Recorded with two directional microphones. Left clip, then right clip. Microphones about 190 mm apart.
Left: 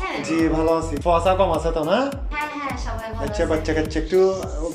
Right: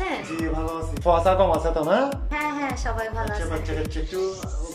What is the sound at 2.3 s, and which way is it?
Music, 55° right (ahead or behind).